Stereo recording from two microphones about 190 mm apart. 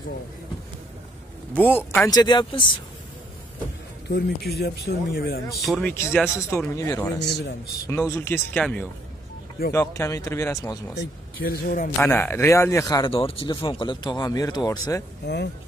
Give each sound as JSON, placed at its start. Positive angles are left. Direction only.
{"t": 1.5, "sound": "speech", "side_deg": 10}
{"t": 4.1, "sound": "speech", "side_deg": 55}
{"t": 5.7, "sound": "speech", "side_deg": 5}
{"t": 6.3, "sound": "speech", "side_deg": 15}
{"t": 7.2, "sound": "speech", "side_deg": 60}
{"t": 7.8, "sound": "speech", "side_deg": 15}
{"t": 11.0, "sound": "speech", "side_deg": 55}
{"t": 12.0, "sound": "speech", "side_deg": 10}
{"t": 15.2, "sound": "speech", "side_deg": 65}